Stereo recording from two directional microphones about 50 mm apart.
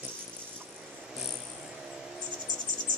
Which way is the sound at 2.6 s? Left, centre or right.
Left.